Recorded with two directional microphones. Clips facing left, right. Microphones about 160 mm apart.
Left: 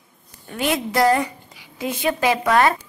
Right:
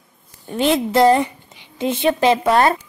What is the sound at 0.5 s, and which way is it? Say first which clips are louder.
A woman's voice: right 5 dB; 25° right (ahead or behind).